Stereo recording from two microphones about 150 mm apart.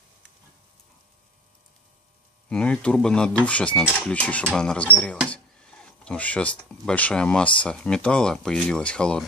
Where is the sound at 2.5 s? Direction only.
5° left (ahead or behind).